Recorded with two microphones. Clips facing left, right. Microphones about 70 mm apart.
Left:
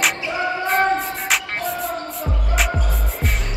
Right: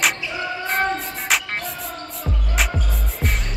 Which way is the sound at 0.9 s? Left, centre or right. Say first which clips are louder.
Left 2 dB; centre.